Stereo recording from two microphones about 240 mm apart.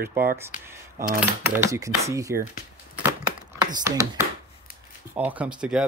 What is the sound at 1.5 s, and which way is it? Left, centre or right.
Speech, centre.